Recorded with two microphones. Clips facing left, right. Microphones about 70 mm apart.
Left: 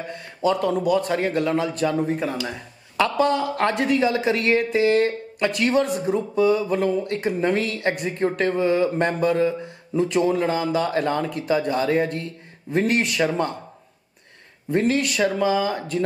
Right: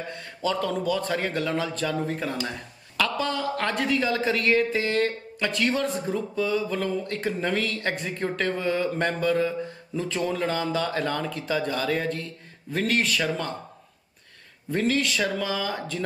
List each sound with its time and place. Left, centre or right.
0.4 s speech: centre
14.7 s speech: left